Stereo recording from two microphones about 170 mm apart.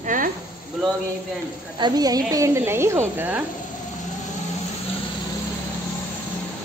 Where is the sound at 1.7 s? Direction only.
25° right (ahead or behind).